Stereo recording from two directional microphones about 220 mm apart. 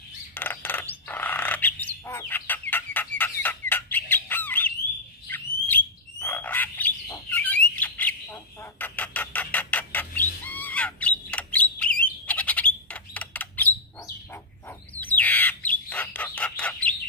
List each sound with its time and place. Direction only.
0.3 s a sound: 10° left (ahead or behind)
5.3 s bird: 10° left (ahead or behind)
15.0 s bird: 10° left (ahead or behind)